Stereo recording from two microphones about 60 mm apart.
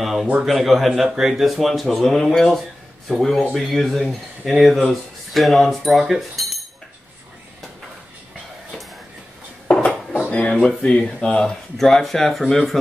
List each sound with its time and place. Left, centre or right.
0.0 s a sound: centre
0.4 s speech: centre
9.7 s dishes: centre
10.3 s speech: centre